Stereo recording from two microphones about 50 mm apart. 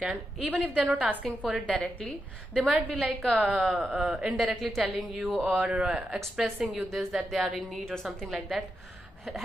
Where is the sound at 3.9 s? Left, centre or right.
Centre.